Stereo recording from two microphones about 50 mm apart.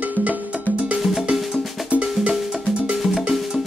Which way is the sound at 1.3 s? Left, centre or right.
Centre.